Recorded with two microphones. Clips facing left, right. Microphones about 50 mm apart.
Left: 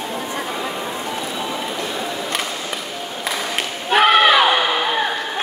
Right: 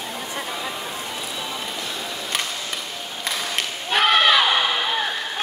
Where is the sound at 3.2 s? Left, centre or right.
Centre.